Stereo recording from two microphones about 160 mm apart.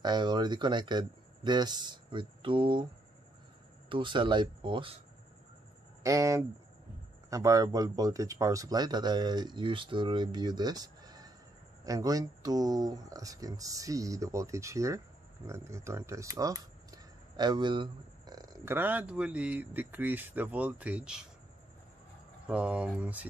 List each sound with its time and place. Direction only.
0.0 s speech: 25° right (ahead or behind)
3.9 s speech: 30° right (ahead or behind)
6.0 s speech: 20° right (ahead or behind)
18.8 s speech: 10° right (ahead or behind)
22.5 s speech: 5° right (ahead or behind)